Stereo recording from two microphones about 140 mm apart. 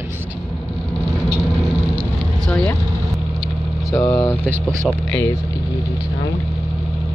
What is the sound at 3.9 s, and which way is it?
Speech, 25° left (ahead or behind).